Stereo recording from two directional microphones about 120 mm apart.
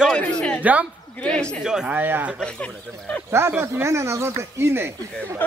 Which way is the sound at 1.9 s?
15° right (ahead or behind).